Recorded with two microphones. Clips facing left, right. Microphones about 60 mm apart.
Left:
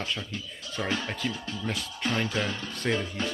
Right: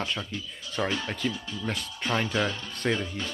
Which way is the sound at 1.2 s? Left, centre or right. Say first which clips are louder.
Right 4 dB; centre.